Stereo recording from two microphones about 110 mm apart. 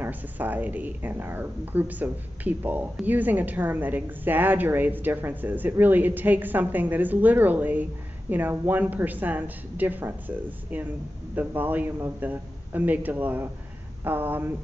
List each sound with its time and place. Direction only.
0.0 s a woman's voice: 15° right (ahead or behind)